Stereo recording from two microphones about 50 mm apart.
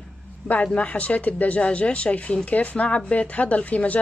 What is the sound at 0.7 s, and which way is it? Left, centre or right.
A woman's voice, left.